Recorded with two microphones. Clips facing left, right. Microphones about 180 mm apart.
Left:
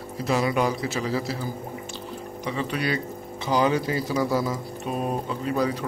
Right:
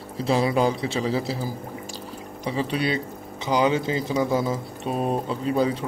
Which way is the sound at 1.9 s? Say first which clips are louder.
Left 1 dB; 30° right (ahead or behind).